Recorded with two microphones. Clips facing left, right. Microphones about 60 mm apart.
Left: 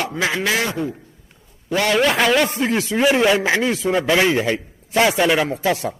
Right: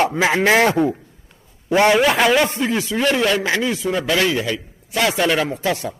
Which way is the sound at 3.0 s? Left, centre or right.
Centre.